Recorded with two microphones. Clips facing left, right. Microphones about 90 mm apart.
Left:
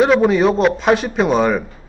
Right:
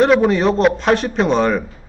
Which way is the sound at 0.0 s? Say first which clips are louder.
Even; centre (ahead or behind).